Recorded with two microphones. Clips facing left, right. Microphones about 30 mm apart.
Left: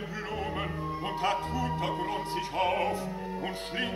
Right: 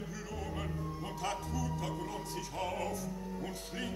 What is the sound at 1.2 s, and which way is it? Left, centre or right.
Music, left.